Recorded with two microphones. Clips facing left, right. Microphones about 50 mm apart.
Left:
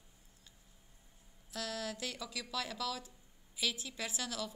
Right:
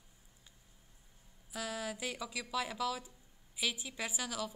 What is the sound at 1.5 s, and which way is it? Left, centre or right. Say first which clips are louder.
A woman's voice: right 1 dB; centre.